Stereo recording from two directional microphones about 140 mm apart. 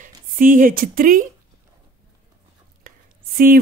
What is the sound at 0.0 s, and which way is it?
Speech, 75° right (ahead or behind).